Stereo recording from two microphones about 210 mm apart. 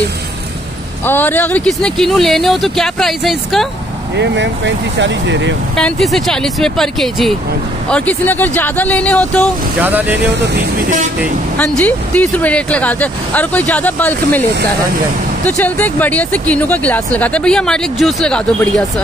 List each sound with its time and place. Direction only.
1.0 s speech: 10° left (ahead or behind)
4.2 s speech: 60° right (ahead or behind)
5.8 s speech: 5° left (ahead or behind)
9.8 s speech: 10° right (ahead or behind)
10.5 s speech: 45° right (ahead or behind)
11.5 s speech: 5° left (ahead or behind)
15.4 s speech: 5° left (ahead or behind)